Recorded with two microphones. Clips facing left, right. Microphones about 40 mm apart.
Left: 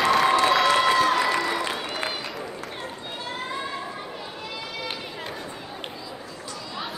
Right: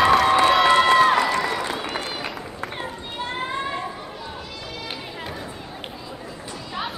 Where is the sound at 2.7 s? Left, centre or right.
Right.